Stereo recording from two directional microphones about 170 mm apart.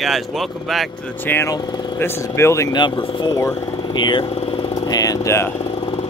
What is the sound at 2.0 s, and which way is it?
Speech, 15° left (ahead or behind).